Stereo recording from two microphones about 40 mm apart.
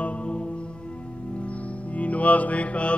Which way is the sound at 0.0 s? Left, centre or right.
Left.